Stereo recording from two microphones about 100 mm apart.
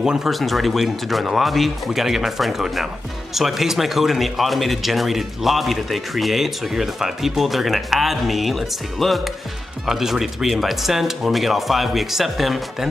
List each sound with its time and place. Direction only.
0.0 s speech: 5° right (ahead or behind)